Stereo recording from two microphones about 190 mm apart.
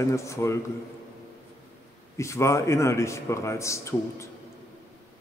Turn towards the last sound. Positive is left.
turn(degrees=15)  # may be behind; listen again after turning